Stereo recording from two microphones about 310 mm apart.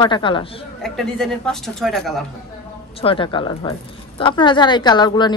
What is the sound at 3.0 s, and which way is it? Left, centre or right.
A woman's voice, centre.